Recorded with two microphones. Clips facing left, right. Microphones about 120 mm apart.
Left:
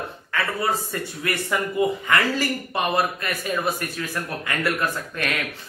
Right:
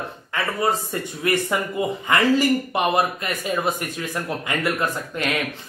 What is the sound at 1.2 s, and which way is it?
Speech, 20° right (ahead or behind).